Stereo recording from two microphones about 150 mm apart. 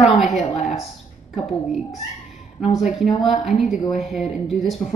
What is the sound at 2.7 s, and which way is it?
Speech, centre (ahead or behind).